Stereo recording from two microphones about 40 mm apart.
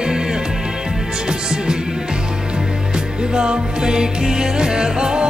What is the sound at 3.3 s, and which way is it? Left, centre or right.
Music, centre.